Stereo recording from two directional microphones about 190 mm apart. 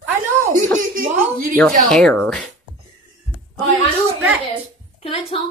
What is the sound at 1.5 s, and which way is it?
Speech, 5° left (ahead or behind).